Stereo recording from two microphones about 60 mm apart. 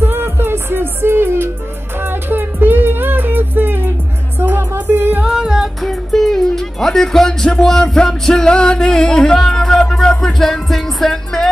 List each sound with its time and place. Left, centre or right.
0.0 s music: right
5.2 s singing: centre
5.8 s music: centre